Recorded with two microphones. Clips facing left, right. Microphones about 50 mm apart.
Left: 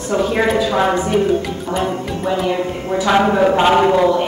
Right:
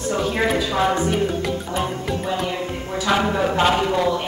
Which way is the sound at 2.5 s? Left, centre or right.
Left.